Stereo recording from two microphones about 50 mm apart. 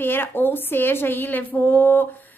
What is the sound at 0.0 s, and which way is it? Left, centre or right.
A woman's voice, left.